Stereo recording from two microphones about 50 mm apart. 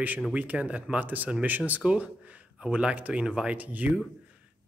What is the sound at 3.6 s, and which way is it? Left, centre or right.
Speech, right.